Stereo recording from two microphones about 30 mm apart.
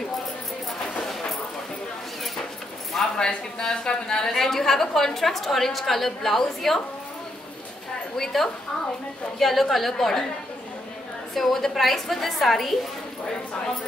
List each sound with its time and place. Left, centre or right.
3.2 s a woman's voice: left
4.3 s a woman's voice: centre
8.2 s a woman's voice: centre
11.3 s a woman's voice: centre